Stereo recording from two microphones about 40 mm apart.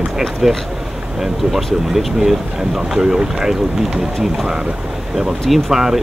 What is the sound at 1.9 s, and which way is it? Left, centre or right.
Speech, centre.